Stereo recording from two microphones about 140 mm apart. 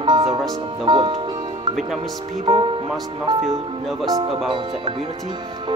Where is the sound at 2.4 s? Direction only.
35° right (ahead or behind).